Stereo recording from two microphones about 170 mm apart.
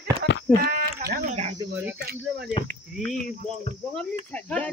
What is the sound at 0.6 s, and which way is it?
Sheep, 60° right (ahead or behind).